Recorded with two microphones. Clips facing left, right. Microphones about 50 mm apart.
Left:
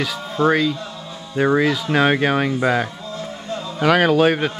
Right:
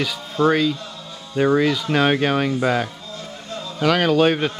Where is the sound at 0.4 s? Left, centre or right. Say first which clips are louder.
Even; centre.